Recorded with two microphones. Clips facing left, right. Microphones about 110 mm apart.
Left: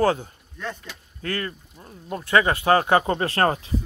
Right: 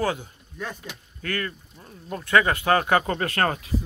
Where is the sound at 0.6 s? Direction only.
10° right (ahead or behind).